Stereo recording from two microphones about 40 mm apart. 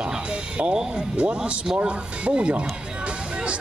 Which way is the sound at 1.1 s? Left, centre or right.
Right.